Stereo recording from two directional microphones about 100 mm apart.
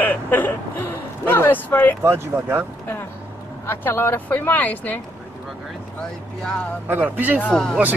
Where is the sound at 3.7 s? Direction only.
25° left (ahead or behind).